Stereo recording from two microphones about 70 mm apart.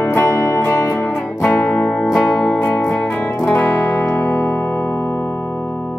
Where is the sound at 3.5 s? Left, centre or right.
Left.